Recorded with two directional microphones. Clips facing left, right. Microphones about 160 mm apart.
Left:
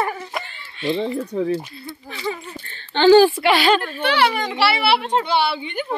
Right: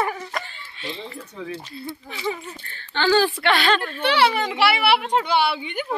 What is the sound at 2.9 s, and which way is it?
Speech, 20° left (ahead or behind).